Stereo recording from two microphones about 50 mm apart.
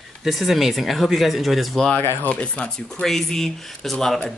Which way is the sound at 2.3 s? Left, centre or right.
Left.